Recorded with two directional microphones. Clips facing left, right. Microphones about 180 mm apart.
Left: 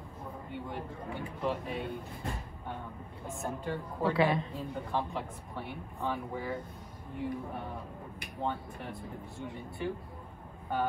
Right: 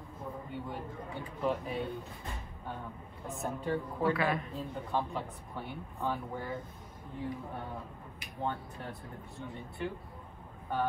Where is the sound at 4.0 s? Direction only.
25° left (ahead or behind).